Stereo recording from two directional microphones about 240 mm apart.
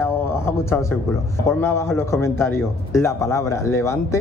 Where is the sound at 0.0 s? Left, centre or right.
Centre.